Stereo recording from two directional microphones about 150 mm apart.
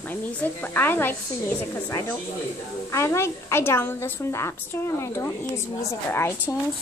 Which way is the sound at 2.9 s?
20° left (ahead or behind).